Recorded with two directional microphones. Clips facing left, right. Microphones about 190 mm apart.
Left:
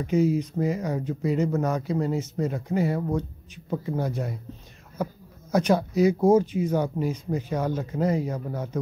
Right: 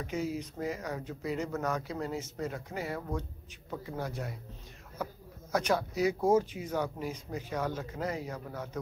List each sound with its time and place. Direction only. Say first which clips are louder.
0.0 s speech: left 12 dB; 20° left (ahead or behind)
5.5 s speech: left 8 dB; 20° left (ahead or behind)